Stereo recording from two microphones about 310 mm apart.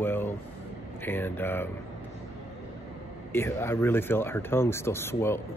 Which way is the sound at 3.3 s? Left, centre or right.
Centre.